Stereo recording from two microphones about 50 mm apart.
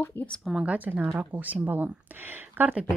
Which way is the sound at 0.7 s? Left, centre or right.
Right.